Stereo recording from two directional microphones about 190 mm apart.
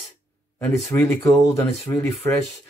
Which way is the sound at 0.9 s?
10° left (ahead or behind).